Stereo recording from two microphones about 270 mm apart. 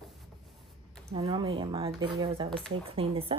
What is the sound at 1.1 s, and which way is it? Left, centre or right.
A woman's voice, centre.